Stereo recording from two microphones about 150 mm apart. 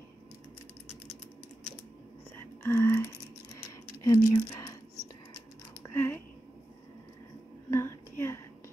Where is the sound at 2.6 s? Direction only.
15° left (ahead or behind).